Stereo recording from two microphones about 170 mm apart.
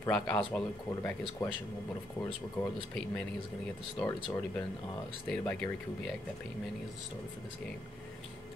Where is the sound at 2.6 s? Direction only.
15° left (ahead or behind).